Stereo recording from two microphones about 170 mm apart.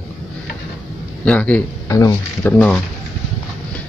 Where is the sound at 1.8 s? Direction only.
20° left (ahead or behind).